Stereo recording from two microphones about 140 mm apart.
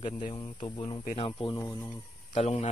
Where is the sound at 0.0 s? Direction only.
35° left (ahead or behind).